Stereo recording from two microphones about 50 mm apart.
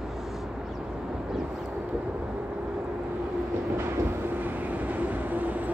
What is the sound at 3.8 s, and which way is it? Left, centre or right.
Vehicle, right.